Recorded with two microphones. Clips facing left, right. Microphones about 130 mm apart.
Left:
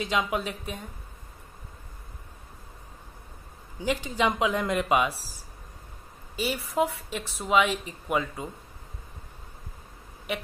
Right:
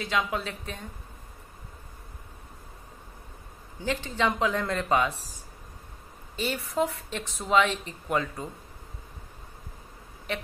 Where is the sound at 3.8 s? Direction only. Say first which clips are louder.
Left 1 dB; 15° left (ahead or behind).